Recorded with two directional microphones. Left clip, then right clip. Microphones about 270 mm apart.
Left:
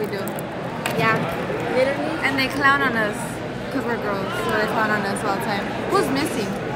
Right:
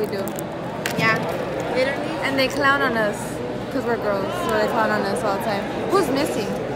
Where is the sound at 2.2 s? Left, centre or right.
Centre.